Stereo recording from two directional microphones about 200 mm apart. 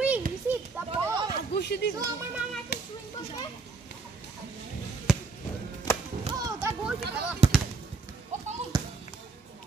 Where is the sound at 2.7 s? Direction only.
55° left (ahead or behind).